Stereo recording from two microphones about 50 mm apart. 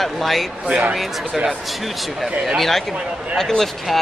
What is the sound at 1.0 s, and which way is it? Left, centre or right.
Speech, centre.